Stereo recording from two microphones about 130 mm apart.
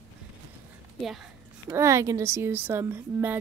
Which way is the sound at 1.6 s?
20° right (ahead or behind).